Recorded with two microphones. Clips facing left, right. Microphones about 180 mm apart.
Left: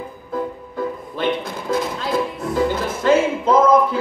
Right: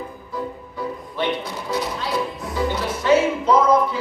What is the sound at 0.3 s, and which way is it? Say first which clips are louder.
Music: left 6 dB; 50° left (ahead or behind).